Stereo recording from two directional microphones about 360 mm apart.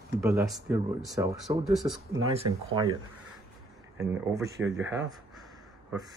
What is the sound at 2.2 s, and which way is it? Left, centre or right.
Speech, right.